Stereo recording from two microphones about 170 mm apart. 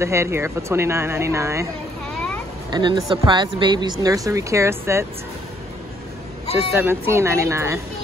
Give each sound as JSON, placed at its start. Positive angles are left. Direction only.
{"t": 0.0, "sound": "speech", "side_deg": -15}
{"t": 2.7, "sound": "speech", "side_deg": -25}
{"t": 6.7, "sound": "speech", "side_deg": -15}